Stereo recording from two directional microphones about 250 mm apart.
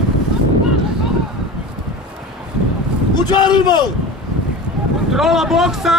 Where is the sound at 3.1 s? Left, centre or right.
Centre.